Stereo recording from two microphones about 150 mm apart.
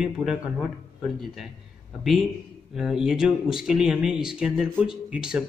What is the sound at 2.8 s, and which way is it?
A man's voice, 5° right (ahead or behind).